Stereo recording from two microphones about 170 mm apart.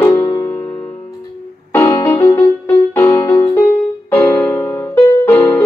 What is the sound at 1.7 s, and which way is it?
Music, 15° left (ahead or behind).